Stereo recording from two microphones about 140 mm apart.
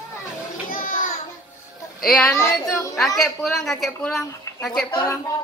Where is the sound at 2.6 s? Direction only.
25° left (ahead or behind).